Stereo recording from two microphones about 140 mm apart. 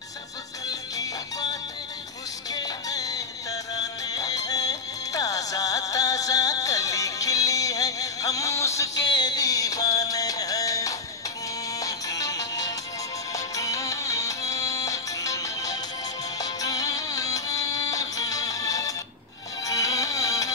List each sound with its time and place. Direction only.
0.7 s music: 25° left (ahead or behind)